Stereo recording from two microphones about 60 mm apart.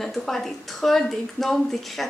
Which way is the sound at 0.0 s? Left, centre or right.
Centre.